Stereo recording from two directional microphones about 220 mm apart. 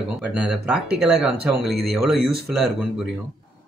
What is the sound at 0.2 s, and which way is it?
Speech, 5° right (ahead or behind).